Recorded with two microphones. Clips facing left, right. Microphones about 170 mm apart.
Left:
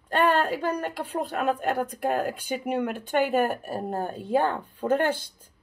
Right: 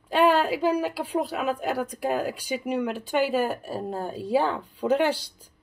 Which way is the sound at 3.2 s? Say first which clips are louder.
Left 1 dB; 60° left (ahead or behind).